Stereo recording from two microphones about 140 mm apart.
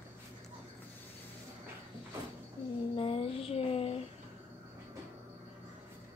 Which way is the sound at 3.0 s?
40° left (ahead or behind).